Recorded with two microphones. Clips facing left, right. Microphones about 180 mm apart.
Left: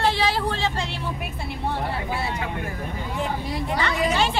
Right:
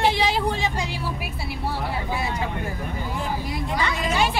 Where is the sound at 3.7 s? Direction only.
15° right (ahead or behind).